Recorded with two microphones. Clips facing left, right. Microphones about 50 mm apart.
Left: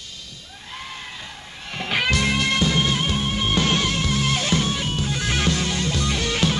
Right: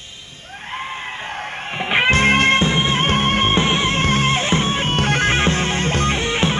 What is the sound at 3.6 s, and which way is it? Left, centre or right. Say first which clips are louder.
Music: right 3 dB; right.